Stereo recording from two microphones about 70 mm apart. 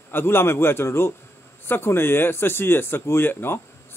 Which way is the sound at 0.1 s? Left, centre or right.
Left.